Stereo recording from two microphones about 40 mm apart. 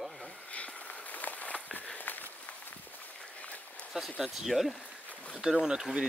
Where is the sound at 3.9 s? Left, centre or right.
Centre.